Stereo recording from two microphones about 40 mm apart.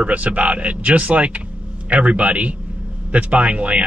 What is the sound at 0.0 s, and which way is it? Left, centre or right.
Speech, right.